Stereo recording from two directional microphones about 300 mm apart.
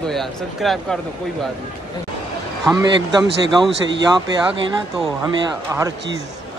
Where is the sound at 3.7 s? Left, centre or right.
Right.